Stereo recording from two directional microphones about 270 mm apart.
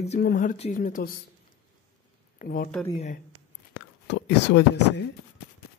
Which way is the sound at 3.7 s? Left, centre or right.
Left.